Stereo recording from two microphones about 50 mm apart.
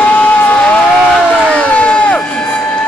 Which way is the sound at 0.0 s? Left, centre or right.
Left.